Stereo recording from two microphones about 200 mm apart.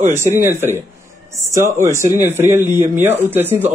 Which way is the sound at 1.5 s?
15° right (ahead or behind).